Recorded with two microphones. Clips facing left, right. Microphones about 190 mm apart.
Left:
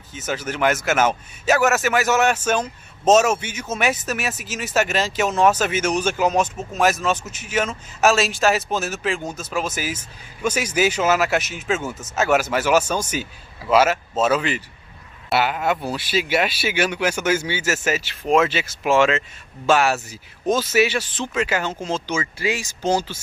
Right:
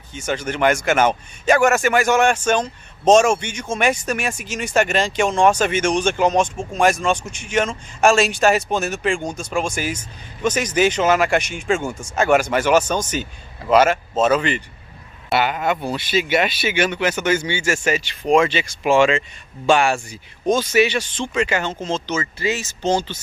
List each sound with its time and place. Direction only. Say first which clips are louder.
0.1 s speech: right 3 dB; 5° left (ahead or behind)